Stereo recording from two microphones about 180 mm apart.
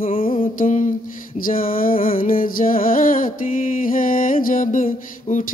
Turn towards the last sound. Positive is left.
turn(degrees=45)  # may be behind; listen again after turning